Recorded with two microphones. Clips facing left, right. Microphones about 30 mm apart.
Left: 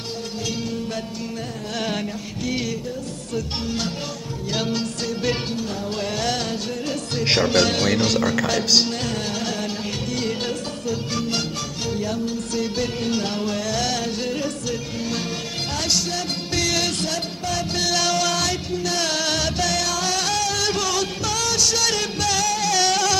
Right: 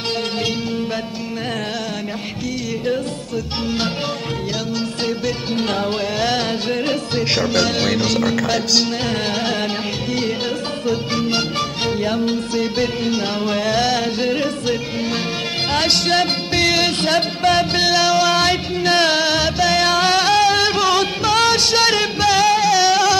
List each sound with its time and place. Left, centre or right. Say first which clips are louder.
6.1 s music: right 5 dB; right
7.2 s music: left 1 dB; centre
7.8 s speech: right 2 dB; centre
10.9 s music: right 5 dB; right
12.0 s music: right 6 dB; right
12.5 s music: right 2 dB; right
15.7 s speech: right 8 dB; right
16.5 s music: right 6 dB; right
17.1 s music: right 10 dB; right
17.7 s music: right 6 dB; right
19.2 s music: right 6 dB; right
19.8 s music: right 8 dB; right
22.7 s music: right 6 dB; centre